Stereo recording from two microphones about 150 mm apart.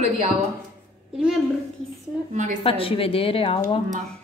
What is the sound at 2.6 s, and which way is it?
Speech, 40° left (ahead or behind).